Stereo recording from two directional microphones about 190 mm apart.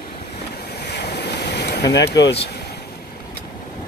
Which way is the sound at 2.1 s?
20° left (ahead or behind).